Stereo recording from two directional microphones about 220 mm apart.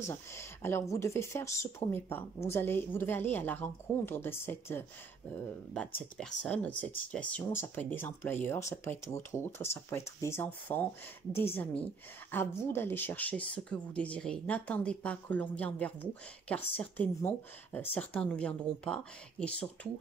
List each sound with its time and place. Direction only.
0.0 s speech: 10° left (ahead or behind)